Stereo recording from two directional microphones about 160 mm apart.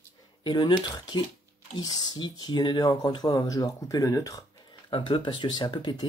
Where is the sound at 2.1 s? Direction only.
25° left (ahead or behind).